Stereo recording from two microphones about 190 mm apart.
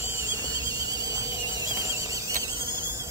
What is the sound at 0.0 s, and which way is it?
Squeal, 15° right (ahead or behind).